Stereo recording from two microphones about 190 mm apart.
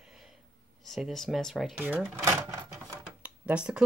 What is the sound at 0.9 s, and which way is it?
Speech, centre (ahead or behind).